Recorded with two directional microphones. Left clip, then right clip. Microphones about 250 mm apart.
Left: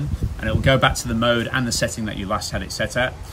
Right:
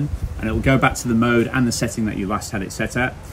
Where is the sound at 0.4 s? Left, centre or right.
Centre.